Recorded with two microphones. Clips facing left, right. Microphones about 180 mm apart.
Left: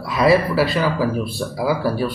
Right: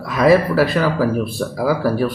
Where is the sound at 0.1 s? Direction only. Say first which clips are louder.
Right 2 dB; 45° right (ahead or behind).